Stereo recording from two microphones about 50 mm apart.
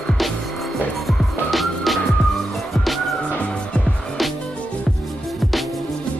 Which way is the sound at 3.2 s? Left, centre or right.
Left.